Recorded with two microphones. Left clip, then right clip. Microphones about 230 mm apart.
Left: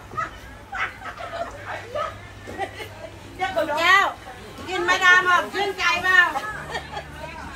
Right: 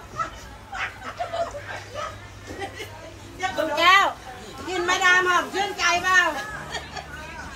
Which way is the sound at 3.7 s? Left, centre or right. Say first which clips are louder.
Right 1 dB; right.